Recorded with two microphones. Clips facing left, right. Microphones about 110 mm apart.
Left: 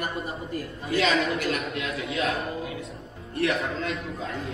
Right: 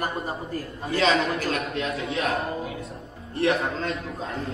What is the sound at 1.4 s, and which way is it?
A man's voice, 35° right (ahead or behind).